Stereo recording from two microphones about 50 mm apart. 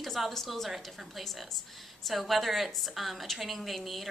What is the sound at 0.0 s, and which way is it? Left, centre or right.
A woman's voice, centre.